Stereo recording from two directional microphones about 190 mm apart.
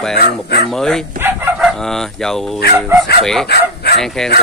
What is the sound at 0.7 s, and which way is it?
Speech, centre (ahead or behind).